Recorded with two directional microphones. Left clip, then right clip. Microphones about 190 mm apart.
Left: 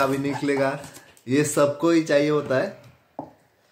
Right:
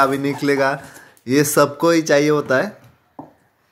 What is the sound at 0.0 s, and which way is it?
Speech, 45° right (ahead or behind).